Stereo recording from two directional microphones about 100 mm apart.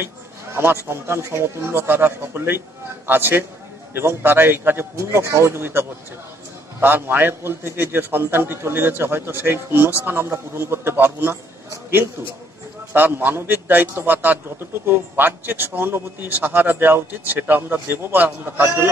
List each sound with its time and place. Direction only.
0.8 s a man's voice: 25° right (ahead or behind)
12.9 s a man's voice: 20° right (ahead or behind)